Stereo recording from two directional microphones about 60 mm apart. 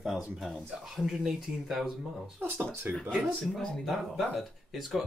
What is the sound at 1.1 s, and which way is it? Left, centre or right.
Speech, centre.